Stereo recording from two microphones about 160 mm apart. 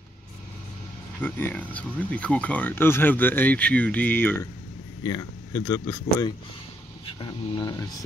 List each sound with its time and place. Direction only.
1.2 s speech: 10° left (ahead or behind)
7.1 s speech: 30° left (ahead or behind)